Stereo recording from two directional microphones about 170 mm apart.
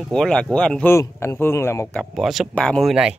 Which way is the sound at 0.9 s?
15° left (ahead or behind).